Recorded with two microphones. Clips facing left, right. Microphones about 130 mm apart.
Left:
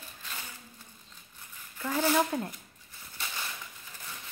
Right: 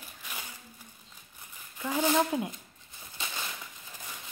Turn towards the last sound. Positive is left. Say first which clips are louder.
# right 1 dB
turn(degrees=-20)  # may be behind; listen again after turning